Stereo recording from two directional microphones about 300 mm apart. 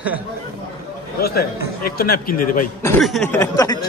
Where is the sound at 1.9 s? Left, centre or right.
Left.